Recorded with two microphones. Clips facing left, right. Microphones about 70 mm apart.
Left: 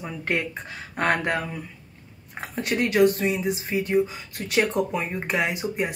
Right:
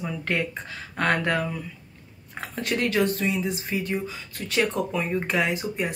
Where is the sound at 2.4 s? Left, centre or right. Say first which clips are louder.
Left 1 dB; centre.